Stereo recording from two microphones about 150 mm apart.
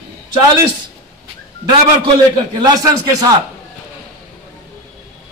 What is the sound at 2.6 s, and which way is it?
Speech, 25° right (ahead or behind).